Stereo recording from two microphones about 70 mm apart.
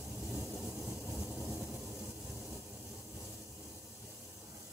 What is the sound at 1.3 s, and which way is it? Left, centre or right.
Vehicle, left.